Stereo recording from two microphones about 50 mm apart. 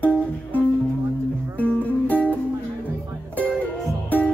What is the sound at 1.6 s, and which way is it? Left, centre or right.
Music, left.